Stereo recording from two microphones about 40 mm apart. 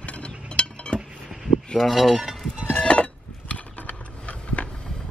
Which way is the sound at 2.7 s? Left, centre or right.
Left.